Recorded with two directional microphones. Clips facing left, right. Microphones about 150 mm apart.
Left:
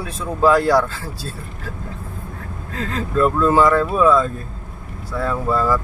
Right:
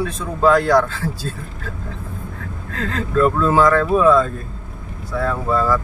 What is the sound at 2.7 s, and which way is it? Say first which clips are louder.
Speech: right 1 dB; centre (ahead or behind).